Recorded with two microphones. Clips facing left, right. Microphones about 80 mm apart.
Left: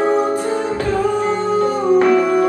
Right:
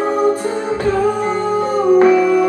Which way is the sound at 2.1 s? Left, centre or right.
Left.